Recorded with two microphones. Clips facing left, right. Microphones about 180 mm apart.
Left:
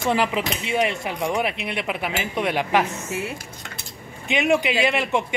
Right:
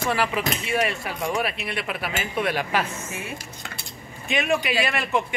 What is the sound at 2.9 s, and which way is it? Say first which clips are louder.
Speech: left 5 dB; 70° left (ahead or behind).